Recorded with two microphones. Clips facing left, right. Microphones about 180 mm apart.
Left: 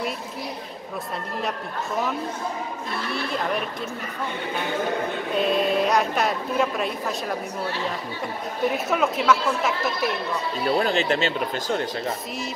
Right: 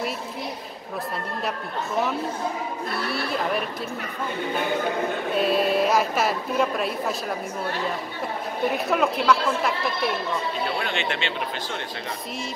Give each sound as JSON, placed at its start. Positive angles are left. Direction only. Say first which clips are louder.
{"t": 3.1, "sound": "speech", "louder": "even", "side_deg": -5}
{"t": 5.3, "sound": "speech", "louder": "even", "side_deg": -5}
{"t": 8.7, "sound": "speech", "louder": "even", "side_deg": 0}
{"t": 10.8, "sound": "speech", "louder": "left 6 dB", "side_deg": 35}